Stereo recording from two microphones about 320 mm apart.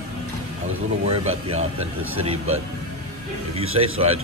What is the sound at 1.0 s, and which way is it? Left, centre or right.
Speech, centre.